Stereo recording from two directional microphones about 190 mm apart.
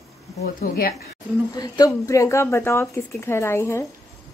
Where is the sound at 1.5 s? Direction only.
20° left (ahead or behind).